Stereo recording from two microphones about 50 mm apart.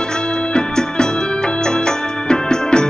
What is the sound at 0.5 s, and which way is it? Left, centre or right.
Organ, centre.